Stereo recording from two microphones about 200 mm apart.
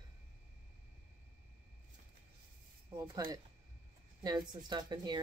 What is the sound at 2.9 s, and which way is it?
Speech, 15° right (ahead or behind).